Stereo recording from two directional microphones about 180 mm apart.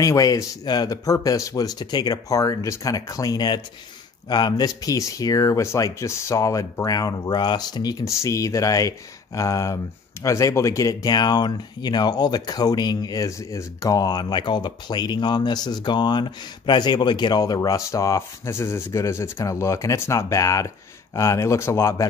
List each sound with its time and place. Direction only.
0.0 s speech: 20° left (ahead or behind)